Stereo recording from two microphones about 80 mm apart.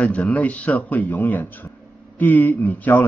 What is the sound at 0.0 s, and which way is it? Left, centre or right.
A man's voice, centre.